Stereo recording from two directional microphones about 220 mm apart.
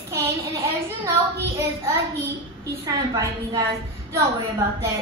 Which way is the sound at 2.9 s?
15° right (ahead or behind).